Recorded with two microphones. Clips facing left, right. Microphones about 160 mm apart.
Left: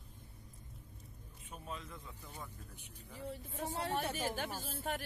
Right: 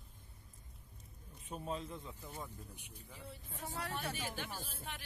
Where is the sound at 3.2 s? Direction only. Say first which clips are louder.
Left 7 dB; 40° left (ahead or behind).